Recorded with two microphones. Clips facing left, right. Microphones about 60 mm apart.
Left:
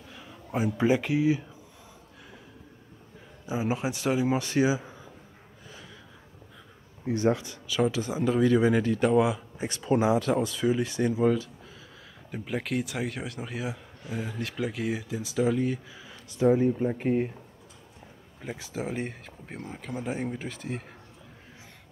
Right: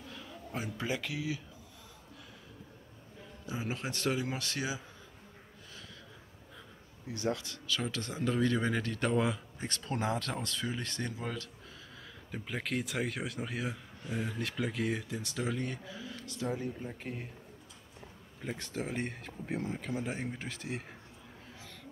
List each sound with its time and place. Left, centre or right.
0.1 s speech: centre
3.4 s speech: centre
7.1 s speech: left
7.6 s a man's voice: centre
16.3 s speech: left
18.4 s a man's voice: centre